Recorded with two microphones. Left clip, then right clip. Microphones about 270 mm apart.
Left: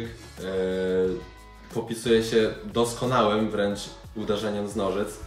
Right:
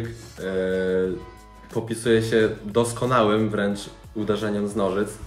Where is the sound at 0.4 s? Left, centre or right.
Centre.